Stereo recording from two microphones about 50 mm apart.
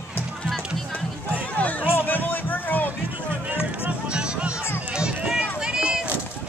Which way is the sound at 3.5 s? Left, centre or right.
Right.